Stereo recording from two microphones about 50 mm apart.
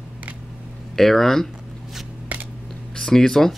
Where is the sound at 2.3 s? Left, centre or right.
Right.